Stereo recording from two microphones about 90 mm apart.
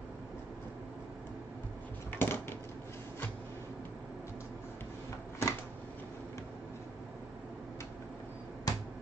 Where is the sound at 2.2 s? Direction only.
25° left (ahead or behind).